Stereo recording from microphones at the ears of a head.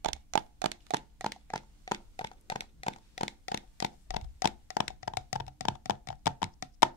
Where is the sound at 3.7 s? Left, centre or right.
Left.